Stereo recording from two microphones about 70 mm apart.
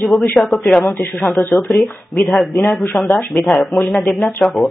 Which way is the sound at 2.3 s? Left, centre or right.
Centre.